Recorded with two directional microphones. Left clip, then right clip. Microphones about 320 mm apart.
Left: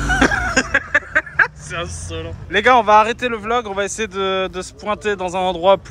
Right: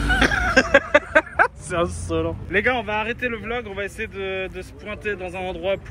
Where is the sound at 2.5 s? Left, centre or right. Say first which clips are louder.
Left 11 dB; centre.